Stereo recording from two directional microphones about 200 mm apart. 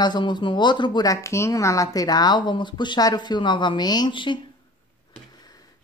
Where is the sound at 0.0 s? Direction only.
20° left (ahead or behind).